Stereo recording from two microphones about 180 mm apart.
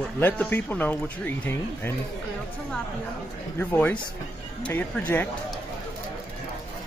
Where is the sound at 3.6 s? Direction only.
10° left (ahead or behind).